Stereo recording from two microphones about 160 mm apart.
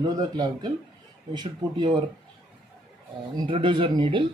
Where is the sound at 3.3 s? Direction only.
30° right (ahead or behind).